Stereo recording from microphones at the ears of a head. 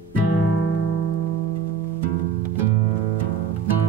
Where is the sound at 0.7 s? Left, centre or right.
Right.